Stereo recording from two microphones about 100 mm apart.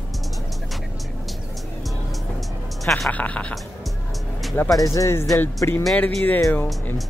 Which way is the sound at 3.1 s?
15° left (ahead or behind).